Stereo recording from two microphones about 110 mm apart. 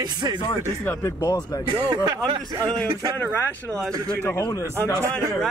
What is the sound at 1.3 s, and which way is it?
Speech, 35° left (ahead or behind).